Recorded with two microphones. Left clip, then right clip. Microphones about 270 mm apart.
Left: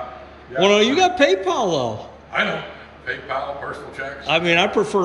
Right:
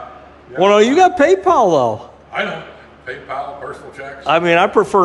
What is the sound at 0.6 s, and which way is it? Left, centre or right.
A man's voice, centre.